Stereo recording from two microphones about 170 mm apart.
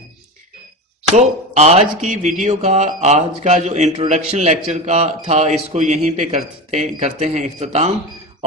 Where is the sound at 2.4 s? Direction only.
40° right (ahead or behind).